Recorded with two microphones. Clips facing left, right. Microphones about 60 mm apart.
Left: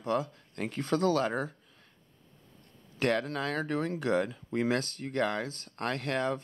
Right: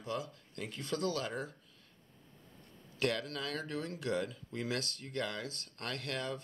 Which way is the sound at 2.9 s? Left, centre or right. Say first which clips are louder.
Left 6 dB; left.